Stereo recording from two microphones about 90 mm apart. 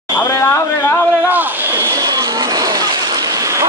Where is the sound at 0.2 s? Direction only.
35° left (ahead or behind).